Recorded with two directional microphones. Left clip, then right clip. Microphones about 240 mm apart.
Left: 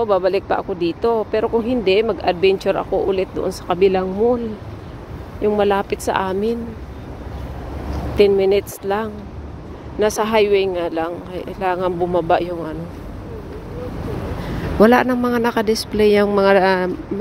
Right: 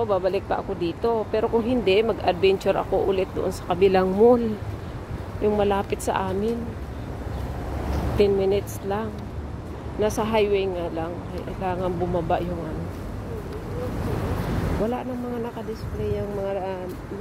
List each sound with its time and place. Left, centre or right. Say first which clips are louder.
0.0 s speech: left 6 dB; left
3.9 s speech: even; centre
5.6 s speech: left 6 dB; left
8.2 s speech: left 7 dB; left
14.9 s speech: left 14 dB; left